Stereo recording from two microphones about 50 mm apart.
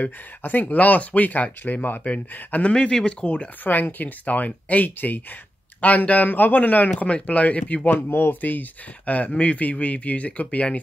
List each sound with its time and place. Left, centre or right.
0.4 s speech: left
2.7 s speech: centre
3.6 s speech: left
8.1 s speech: left